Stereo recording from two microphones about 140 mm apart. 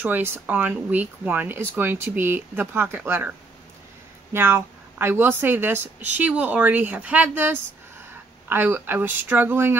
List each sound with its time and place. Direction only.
0.0 s speech: 15° right (ahead or behind)